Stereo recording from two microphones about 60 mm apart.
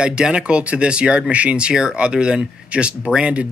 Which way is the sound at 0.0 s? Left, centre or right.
Centre.